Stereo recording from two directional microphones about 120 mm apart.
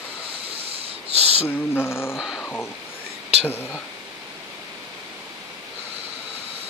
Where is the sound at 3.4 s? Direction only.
20° left (ahead or behind).